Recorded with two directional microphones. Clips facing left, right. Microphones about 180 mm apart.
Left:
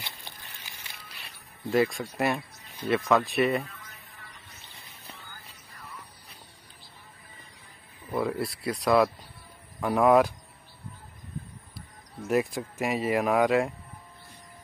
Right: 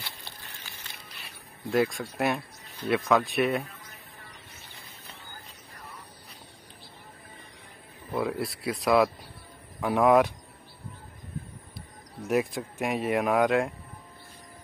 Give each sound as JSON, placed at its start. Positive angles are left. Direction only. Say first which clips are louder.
{"t": 0.0, "sound": "a sound", "louder": "even", "side_deg": 15}
{"t": 1.7, "sound": "speech", "louder": "left 1 dB", "side_deg": 0}
{"t": 8.2, "sound": "speech", "louder": "left 1 dB", "side_deg": 0}
{"t": 12.2, "sound": "speech", "louder": "even", "side_deg": 0}